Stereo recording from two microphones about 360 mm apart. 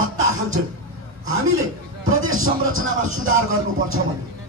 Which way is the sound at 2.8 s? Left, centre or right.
Right.